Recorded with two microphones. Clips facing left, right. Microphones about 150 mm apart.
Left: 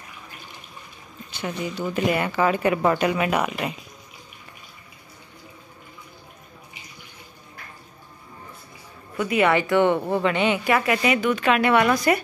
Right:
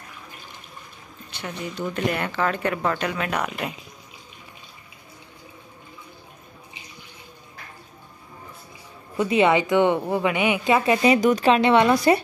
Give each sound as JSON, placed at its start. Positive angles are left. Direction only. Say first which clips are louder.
{"t": 1.3, "sound": "speech", "louder": "left 3 dB", "side_deg": 0}
{"t": 9.1, "sound": "a woman's voice", "louder": "right 2 dB", "side_deg": -30}
{"t": 10.6, "sound": "a woman's voice", "louder": "right 2 dB", "side_deg": -25}
{"t": 11.1, "sound": "a woman's voice", "louder": "right 3 dB", "side_deg": -40}